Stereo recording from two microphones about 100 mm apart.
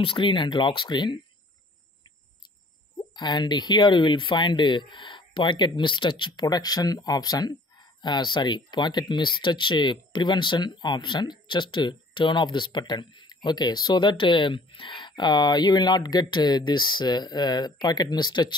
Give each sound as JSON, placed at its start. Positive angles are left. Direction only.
{"t": 0.0, "sound": "speech", "side_deg": 55}
{"t": 3.2, "sound": "speech", "side_deg": 45}